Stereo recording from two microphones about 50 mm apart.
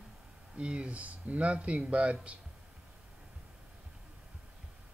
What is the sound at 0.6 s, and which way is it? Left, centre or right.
Speech, right.